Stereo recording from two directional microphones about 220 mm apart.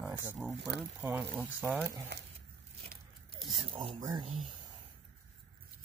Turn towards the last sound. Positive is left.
turn(degrees=-20)  # may be behind; listen again after turning